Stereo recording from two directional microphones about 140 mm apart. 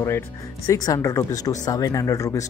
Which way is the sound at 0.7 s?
25° left (ahead or behind).